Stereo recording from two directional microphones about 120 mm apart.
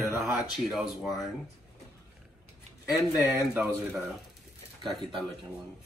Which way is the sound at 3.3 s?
15° right (ahead or behind).